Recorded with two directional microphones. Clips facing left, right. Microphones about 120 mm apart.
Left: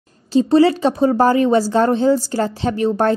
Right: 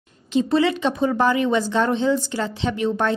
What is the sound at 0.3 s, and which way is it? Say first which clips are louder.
A woman's voice: left 6 dB; 35° left (ahead or behind).